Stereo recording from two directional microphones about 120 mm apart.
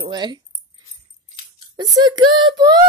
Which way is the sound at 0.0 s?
35° right (ahead or behind).